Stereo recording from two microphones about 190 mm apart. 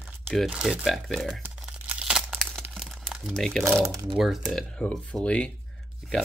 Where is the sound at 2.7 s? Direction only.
Centre (ahead or behind).